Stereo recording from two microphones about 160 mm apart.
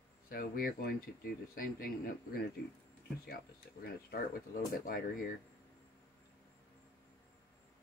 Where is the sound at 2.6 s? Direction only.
75° left (ahead or behind).